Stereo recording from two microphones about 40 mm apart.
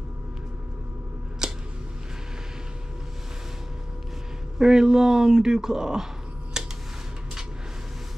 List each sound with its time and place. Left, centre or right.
1.4 s scissors: centre
4.6 s speech: centre
6.5 s a sound: centre